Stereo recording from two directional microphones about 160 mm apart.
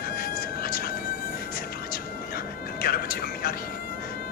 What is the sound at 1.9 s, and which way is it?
Music, 65° left (ahead or behind).